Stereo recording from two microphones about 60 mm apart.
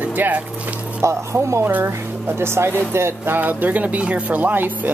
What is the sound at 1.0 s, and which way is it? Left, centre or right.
Speech, right.